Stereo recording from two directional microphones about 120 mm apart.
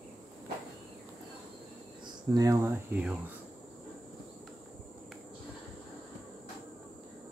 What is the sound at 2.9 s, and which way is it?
Speech, 10° right (ahead or behind).